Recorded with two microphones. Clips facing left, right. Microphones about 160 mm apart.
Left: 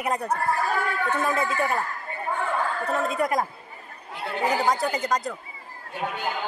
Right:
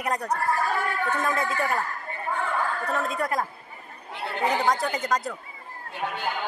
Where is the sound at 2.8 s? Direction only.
Centre (ahead or behind).